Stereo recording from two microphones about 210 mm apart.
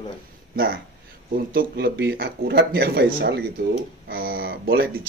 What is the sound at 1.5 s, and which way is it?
Speech, 50° right (ahead or behind).